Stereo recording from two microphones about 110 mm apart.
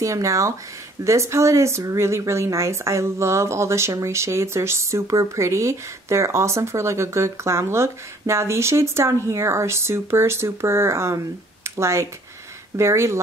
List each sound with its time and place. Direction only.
0.0 s speech: 30° right (ahead or behind)